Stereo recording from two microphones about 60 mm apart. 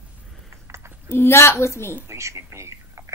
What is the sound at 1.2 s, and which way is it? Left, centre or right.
Speech, left.